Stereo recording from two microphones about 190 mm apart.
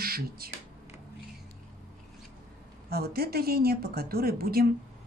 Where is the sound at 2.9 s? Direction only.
55° right (ahead or behind).